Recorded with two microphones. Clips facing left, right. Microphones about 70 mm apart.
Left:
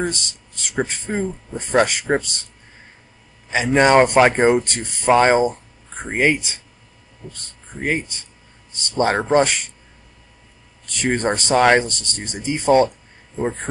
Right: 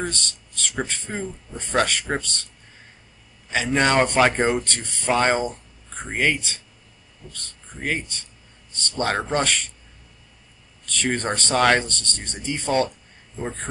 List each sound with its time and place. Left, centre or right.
0.0 s speech: centre
3.4 s speech: centre
10.9 s speech: centre